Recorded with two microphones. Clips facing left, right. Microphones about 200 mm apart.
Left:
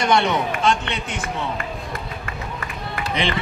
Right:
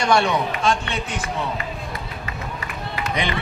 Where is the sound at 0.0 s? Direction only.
20° left (ahead or behind).